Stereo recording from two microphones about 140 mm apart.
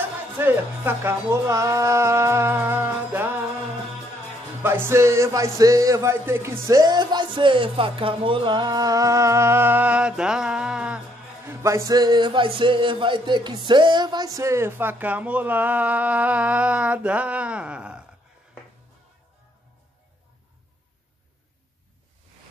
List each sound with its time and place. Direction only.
0.4 s speech: 15° right (ahead or behind)
4.6 s speech: 15° right (ahead or behind)
11.4 s a man's voice: 20° right (ahead or behind)